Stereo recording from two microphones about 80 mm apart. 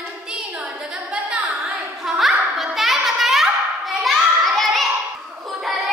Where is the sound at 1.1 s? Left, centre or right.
Centre.